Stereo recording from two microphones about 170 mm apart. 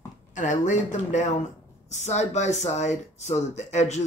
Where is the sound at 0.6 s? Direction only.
45° left (ahead or behind).